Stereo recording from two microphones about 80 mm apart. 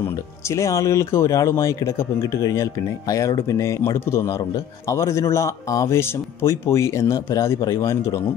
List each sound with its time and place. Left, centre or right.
0.0 s speech: left